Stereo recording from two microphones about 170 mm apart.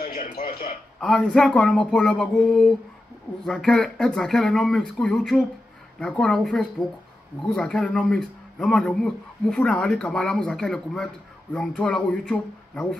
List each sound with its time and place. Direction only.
0.0 s a man's voice: 55° left (ahead or behind)
1.0 s speech: 5° left (ahead or behind)